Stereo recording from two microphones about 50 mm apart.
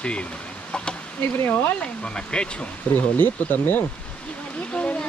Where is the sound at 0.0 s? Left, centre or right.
Left.